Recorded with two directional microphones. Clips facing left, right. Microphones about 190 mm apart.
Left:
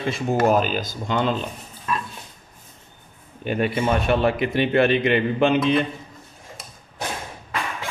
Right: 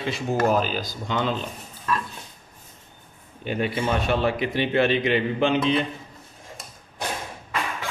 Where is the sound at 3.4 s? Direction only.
55° left (ahead or behind).